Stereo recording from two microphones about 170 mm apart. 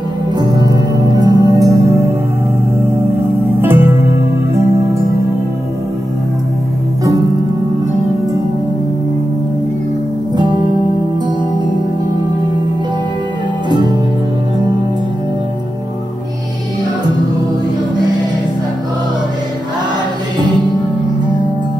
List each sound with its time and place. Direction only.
0.4 s music: 25° right (ahead or behind)
3.6 s music: 10° right (ahead or behind)
10.3 s music: 25° right (ahead or behind)
13.7 s music: 25° right (ahead or behind)